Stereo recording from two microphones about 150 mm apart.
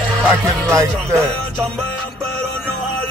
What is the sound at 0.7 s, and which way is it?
Speech, 20° right (ahead or behind).